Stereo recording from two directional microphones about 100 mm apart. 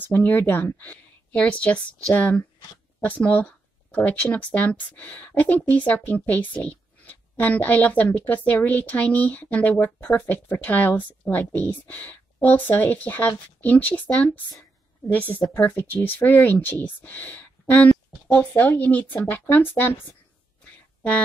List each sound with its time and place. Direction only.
0.0 s a woman's voice: 20° left (ahead or behind)